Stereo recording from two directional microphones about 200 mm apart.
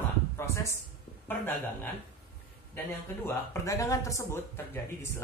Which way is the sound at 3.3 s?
15° left (ahead or behind).